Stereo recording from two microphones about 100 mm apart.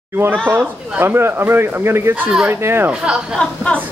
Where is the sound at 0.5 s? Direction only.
20° right (ahead or behind).